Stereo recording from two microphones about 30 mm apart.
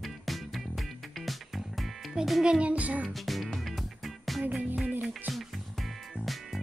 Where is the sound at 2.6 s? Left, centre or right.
Right.